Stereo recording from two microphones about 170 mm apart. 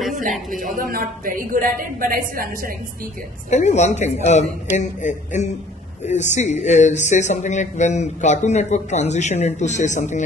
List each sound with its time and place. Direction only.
0.1 s a woman's voice: 50° right (ahead or behind)
3.4 s speech: 40° left (ahead or behind)